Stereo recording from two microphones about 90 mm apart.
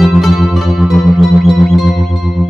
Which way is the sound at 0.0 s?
Centre (ahead or behind).